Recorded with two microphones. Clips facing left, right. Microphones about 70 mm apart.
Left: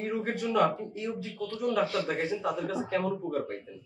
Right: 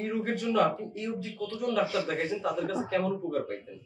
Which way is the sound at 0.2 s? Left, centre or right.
Left.